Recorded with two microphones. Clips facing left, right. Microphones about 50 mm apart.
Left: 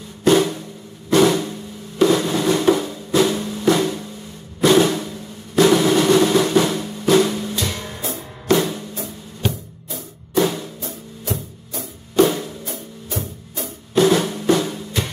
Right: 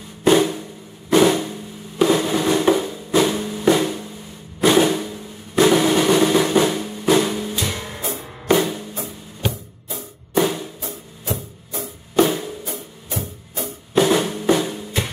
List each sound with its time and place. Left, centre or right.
0.2 s drum: centre
11.3 s music: centre
14.1 s drum: centre